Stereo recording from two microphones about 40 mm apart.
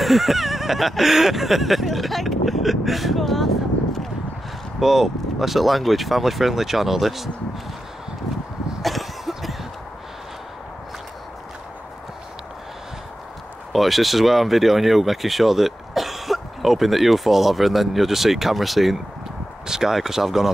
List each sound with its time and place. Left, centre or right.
0.0 s speech: centre
4.7 s speech: centre
8.8 s cough: centre
13.7 s speech: centre